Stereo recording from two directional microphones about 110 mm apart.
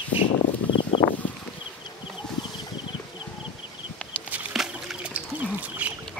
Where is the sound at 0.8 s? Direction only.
50° left (ahead or behind).